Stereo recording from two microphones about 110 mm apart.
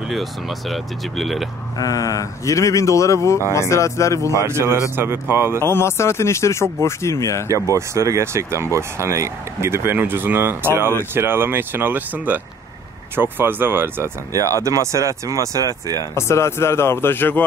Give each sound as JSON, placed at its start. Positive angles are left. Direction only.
{"t": 0.1, "sound": "speech", "side_deg": 0}
{"t": 1.8, "sound": "speech", "side_deg": 30}
{"t": 4.5, "sound": "speech", "side_deg": -20}
{"t": 5.6, "sound": "speech", "side_deg": 25}
{"t": 7.7, "sound": "speech", "side_deg": -25}
{"t": 16.0, "sound": "speech", "side_deg": 25}